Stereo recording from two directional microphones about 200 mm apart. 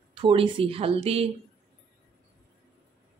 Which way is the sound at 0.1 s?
25° right (ahead or behind).